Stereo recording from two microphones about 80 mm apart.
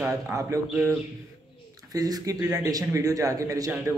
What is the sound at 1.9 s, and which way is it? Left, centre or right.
Speech, right.